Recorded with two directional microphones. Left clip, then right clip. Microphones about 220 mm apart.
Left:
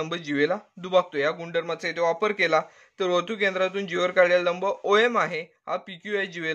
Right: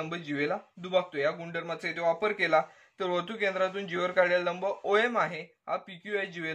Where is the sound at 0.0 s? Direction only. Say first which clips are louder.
Left 7 dB; 45° left (ahead or behind).